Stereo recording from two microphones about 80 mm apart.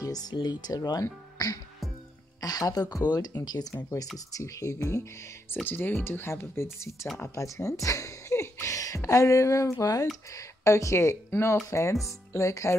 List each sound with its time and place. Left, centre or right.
0.0 s speech: left
4.3 s speech: left
5.5 s speech: left